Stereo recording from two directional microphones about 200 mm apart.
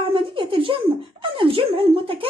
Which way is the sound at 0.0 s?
25° right (ahead or behind).